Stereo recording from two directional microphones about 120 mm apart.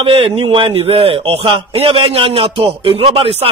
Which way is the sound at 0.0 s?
50° right (ahead or behind).